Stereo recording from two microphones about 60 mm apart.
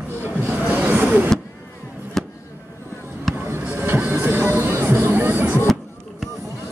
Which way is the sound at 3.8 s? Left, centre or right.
Right.